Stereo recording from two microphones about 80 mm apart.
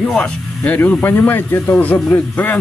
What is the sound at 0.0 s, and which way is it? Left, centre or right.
Speech, centre.